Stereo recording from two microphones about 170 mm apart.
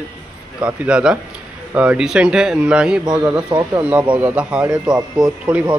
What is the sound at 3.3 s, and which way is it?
Speech, 25° right (ahead or behind).